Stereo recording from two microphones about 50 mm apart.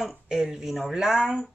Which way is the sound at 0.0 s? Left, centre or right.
Centre.